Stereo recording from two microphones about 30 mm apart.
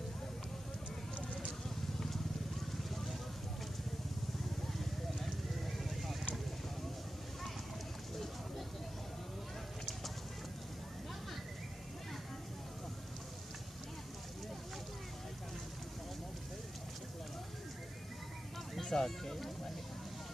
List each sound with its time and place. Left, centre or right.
2.8 s vehicle: centre
4.7 s vehicle: centre
18.9 s a sound: centre